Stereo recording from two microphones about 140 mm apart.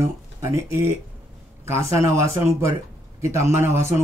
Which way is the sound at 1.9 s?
20° right (ahead or behind).